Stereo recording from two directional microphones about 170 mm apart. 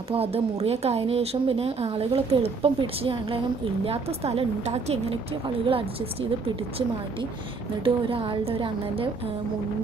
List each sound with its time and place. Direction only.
0.1 s speech: 35° right (ahead or behind)
7.8 s speech: 35° right (ahead or behind)